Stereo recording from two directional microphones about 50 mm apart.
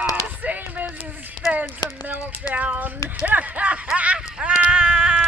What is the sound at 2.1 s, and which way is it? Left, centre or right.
Speech, right.